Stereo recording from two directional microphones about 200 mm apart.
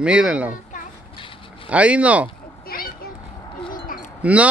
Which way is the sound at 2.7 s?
45° left (ahead or behind).